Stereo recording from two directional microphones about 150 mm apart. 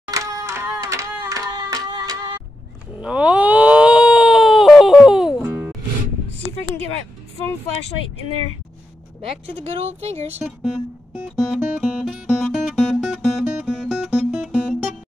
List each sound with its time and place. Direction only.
0.1 s music: 20° right (ahead or behind)
3.0 s a sound: 5° right (ahead or behind)
9.2 s speech: 45° right (ahead or behind)
11.1 s music: centre (ahead or behind)